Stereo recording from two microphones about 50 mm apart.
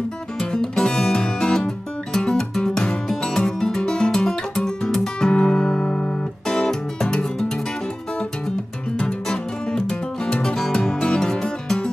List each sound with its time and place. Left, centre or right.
0.4 s music: centre